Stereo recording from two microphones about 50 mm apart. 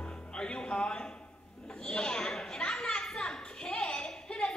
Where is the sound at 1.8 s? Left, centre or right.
Centre.